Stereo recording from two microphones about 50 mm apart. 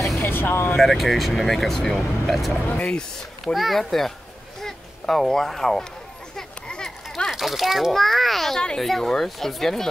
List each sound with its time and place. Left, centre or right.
0.2 s vehicle: left
0.7 s speech: centre
2.8 s speech: centre
3.5 s speech: centre
6.3 s children playing: centre
7.2 s a child's voice: centre